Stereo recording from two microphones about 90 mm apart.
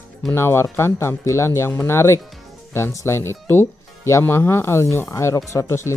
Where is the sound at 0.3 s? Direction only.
25° left (ahead or behind).